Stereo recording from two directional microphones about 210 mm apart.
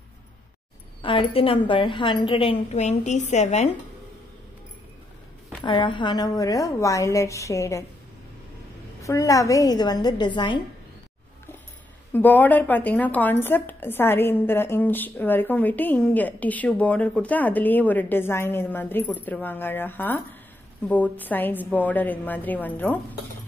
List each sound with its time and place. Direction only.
1.0 s a woman's voice: 25° left (ahead or behind)
5.6 s a woman's voice: 20° left (ahead or behind)
9.0 s a woman's voice: 15° left (ahead or behind)
12.1 s a woman's voice: 10° left (ahead or behind)